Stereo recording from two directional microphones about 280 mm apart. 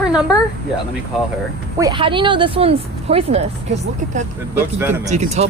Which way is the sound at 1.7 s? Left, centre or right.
Centre.